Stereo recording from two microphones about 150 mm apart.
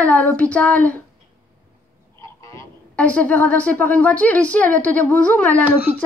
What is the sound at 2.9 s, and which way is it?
A woman's voice, 10° left (ahead or behind).